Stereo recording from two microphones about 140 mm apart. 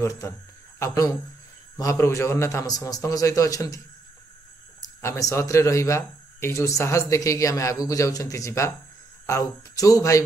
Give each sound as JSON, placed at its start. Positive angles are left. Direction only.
{"t": 0.0, "sound": "speech", "side_deg": 20}
{"t": 4.8, "sound": "speech", "side_deg": 20}